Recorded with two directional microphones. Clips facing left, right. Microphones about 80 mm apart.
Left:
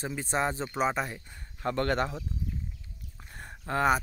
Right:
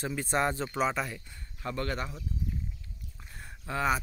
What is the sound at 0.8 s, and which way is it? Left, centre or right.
Speech, left.